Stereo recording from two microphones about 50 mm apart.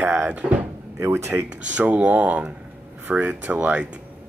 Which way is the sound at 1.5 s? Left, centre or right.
Right.